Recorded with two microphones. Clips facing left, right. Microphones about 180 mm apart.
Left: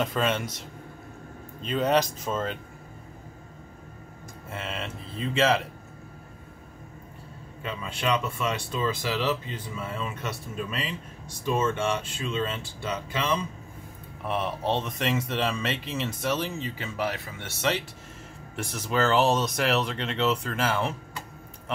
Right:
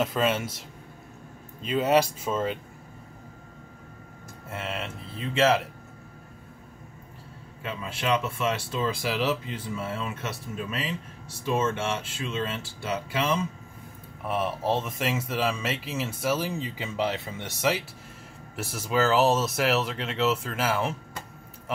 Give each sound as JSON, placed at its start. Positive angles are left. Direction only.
{"t": 0.0, "sound": "speech", "side_deg": -5}
{"t": 1.6, "sound": "speech", "side_deg": -5}
{"t": 4.5, "sound": "speech", "side_deg": 0}
{"t": 7.6, "sound": "speech", "side_deg": -5}